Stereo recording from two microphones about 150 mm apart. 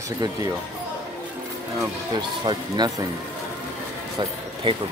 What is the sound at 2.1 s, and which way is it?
Speech, 30° right (ahead or behind).